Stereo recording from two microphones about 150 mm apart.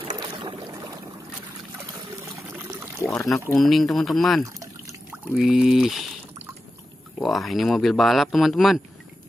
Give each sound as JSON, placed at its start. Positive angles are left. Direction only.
{"t": 0.0, "sound": "boat", "side_deg": -35}
{"t": 2.5, "sound": "water", "side_deg": -15}
{"t": 3.5, "sound": "speech", "side_deg": 0}
{"t": 7.2, "sound": "speech", "side_deg": 0}